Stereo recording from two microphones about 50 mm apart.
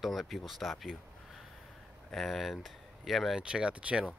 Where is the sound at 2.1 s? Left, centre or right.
Centre.